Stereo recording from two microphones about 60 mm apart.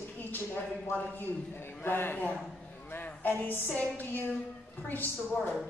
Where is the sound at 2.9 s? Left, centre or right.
Left.